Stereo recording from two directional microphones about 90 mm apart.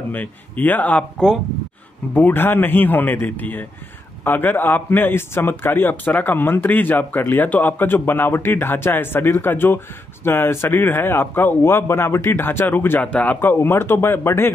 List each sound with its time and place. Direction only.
0.1 s a man's voice: 20° left (ahead or behind)